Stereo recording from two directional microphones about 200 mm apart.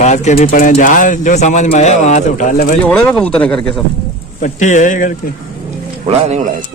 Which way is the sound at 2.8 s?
5° left (ahead or behind).